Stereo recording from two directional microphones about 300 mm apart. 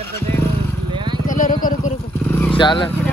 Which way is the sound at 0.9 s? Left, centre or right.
Centre.